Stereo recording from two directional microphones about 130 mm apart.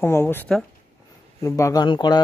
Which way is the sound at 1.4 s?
25° left (ahead or behind).